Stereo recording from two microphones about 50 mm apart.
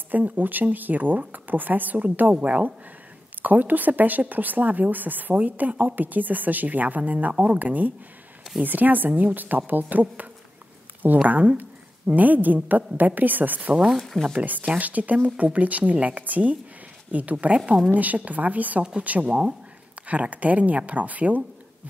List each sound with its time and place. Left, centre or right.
0.1 s a woman's voice: right
11.2 s speech: right
13.9 s speech: centre
14.3 s a woman's voice: right
19.2 s a woman's voice: centre